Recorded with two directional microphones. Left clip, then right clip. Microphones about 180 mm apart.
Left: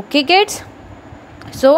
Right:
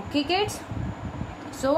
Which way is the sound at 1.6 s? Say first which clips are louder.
Left 13 dB; 40° left (ahead or behind).